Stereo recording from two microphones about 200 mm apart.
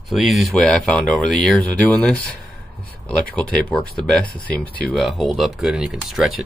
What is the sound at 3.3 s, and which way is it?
Speech, 5° left (ahead or behind).